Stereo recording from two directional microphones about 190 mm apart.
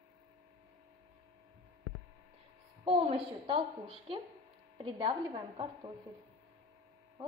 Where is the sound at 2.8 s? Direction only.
30° right (ahead or behind).